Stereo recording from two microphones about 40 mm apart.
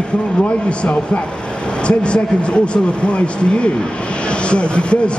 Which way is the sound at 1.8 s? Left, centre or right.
Left.